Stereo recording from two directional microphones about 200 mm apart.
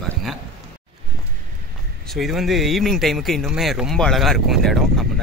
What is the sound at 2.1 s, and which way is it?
Speech, centre (ahead or behind).